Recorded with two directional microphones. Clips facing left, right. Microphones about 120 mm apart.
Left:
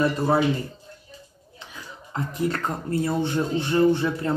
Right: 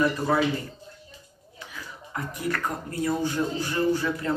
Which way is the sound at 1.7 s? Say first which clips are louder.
Left 1 dB; 25° left (ahead or behind).